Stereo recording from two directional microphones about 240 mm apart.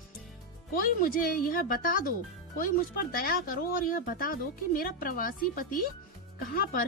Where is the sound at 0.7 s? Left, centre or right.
Left.